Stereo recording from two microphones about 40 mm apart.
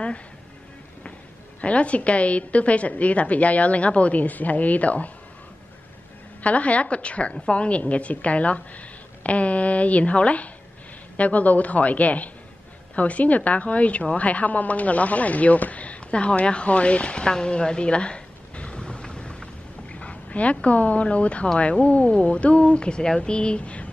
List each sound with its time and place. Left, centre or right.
1.6 s a woman's voice: left
6.4 s a woman's voice: left